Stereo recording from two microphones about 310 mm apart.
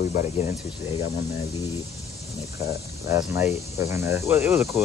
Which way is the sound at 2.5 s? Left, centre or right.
Centre.